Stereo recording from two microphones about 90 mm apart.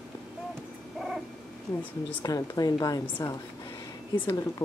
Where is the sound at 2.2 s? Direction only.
45° left (ahead or behind).